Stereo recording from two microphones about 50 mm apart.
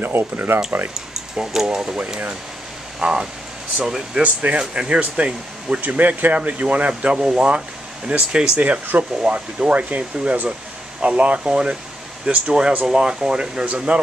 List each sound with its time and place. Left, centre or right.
0.0 s speech: right
1.3 s speech: centre
3.0 s speech: centre
4.2 s speech: right